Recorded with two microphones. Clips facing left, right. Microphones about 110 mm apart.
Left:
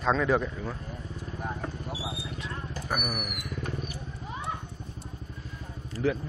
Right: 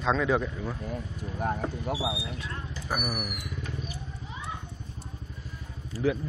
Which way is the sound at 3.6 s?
50° left (ahead or behind).